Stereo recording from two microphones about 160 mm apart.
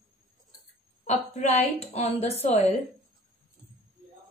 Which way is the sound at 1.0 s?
45° left (ahead or behind).